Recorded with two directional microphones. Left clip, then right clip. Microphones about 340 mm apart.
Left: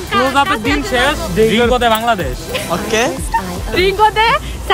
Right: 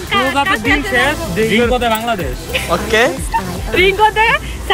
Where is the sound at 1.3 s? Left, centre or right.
Left.